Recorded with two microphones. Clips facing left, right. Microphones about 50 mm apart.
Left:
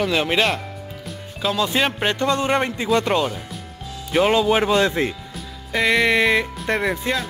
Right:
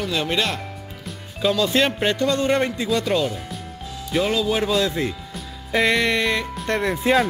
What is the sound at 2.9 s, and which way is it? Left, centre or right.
Speech, left.